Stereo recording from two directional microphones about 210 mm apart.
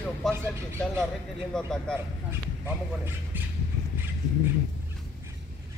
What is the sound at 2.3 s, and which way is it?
Speech, 10° right (ahead or behind).